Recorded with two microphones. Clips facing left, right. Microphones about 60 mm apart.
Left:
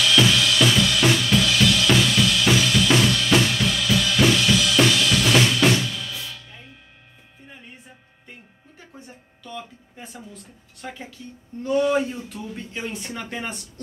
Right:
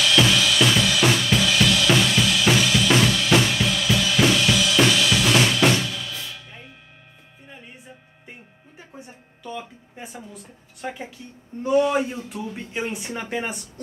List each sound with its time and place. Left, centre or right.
0.0 s drum kit: centre
8.3 s music: centre
11.6 s speech: centre